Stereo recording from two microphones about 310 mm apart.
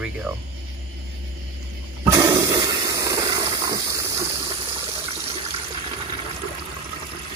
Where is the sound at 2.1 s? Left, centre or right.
Centre.